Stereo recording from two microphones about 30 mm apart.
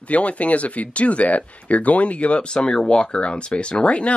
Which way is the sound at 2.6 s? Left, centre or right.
Left.